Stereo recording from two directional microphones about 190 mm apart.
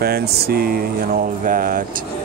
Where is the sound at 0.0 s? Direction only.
55° right (ahead or behind).